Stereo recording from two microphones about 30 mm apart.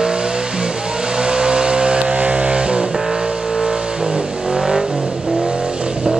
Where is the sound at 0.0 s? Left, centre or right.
Right.